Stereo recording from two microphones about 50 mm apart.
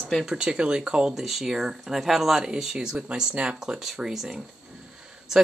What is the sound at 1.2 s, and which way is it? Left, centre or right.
Speech, centre.